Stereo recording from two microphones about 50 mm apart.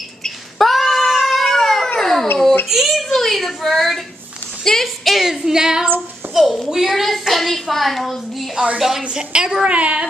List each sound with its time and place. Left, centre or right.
0.6 s cat: centre
2.0 s a sound: centre
2.7 s a child's voice: centre
5.1 s a woman's voice: centre
6.3 s a woman's voice: centre; by 10.0 s right